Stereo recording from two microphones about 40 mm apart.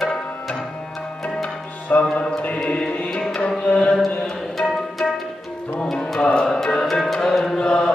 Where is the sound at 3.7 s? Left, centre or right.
Left.